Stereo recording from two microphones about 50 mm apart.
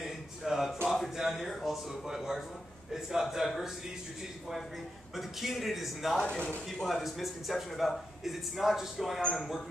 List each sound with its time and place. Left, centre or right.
0.0 s a sound: centre
0.8 s a man's voice: centre
5.1 s speech: centre
6.1 s speech: centre
6.8 s speech: centre